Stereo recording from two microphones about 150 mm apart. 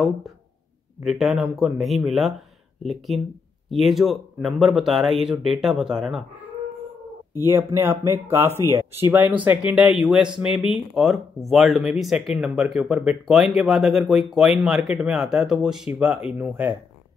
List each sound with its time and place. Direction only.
1.0 s speech: centre (ahead or behind)
7.3 s speech: 15° right (ahead or behind)
9.7 s speech: 5° right (ahead or behind)